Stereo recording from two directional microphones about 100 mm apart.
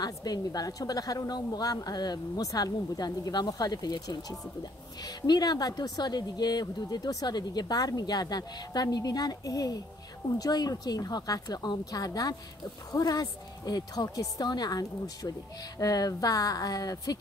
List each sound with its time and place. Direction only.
0.0 s speech: 40° left (ahead or behind)